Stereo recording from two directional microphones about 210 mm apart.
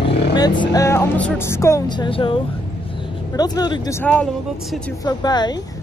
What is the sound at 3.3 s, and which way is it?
Speech, 20° left (ahead or behind).